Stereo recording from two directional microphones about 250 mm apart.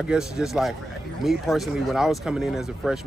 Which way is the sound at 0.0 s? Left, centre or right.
Centre.